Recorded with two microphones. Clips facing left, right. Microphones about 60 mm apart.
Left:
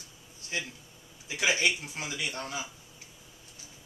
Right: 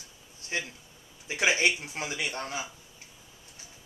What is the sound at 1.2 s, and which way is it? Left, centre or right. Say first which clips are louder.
Speech: right 2 dB; right.